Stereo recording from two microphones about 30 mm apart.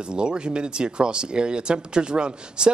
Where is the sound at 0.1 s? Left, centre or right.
Right.